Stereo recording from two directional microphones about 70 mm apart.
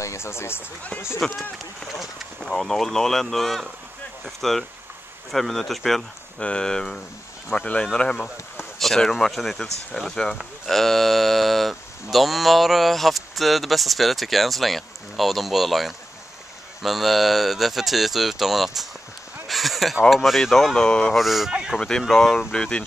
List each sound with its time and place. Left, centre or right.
0.0 s speech: left
1.2 s speech: centre
19.4 s a sound: centre
20.1 s speech: centre
21.2 s speech: centre
21.5 s a sound: centre
21.7 s speech: centre
22.5 s speech: centre